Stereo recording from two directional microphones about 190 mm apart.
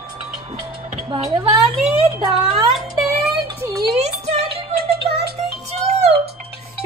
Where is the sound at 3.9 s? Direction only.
35° right (ahead or behind).